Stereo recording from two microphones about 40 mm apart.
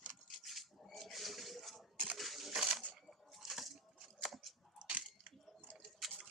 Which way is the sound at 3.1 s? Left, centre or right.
Centre.